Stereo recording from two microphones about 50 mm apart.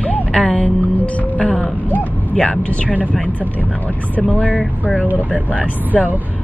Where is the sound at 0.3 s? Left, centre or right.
Centre.